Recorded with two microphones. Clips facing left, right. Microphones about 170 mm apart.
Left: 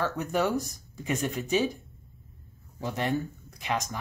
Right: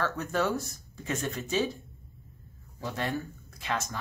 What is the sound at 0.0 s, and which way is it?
Speech, 15° left (ahead or behind).